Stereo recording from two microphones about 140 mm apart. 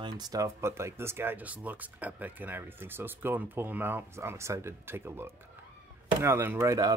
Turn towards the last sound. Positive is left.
turn(degrees=-20)  # may be behind; listen again after turning